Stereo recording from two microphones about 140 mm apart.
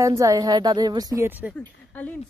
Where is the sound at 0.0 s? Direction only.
25° right (ahead or behind).